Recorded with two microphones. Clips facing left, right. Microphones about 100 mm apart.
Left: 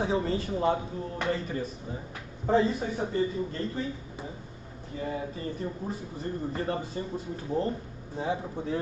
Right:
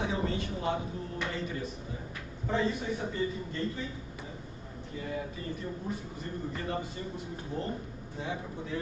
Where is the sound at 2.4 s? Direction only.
35° left (ahead or behind).